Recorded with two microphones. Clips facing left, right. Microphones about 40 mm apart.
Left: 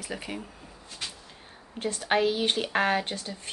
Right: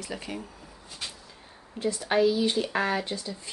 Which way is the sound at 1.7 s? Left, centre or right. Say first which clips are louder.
Right 1 dB; left.